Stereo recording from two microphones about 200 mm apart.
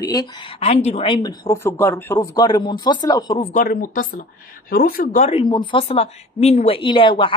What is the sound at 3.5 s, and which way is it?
Speech, 40° left (ahead or behind).